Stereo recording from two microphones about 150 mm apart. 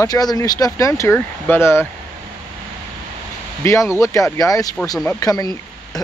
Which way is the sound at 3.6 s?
20° left (ahead or behind).